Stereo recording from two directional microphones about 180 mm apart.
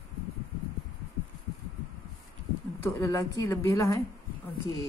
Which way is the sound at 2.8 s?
15° left (ahead or behind).